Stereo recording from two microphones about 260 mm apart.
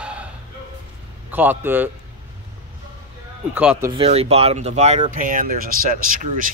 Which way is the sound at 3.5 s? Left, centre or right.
Centre.